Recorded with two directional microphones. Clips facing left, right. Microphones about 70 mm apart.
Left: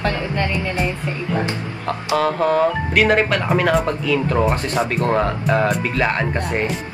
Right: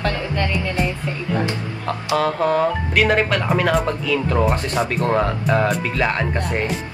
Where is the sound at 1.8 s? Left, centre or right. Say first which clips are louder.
Left 1 dB; left.